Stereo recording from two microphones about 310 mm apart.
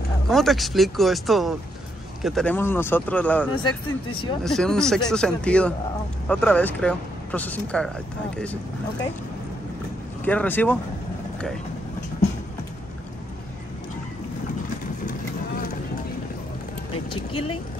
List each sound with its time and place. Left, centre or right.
0.3 s speech: centre
10.2 s speech: centre
16.9 s vehicle: centre